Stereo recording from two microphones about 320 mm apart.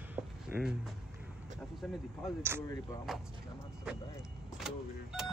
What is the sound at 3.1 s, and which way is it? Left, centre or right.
Speech, centre.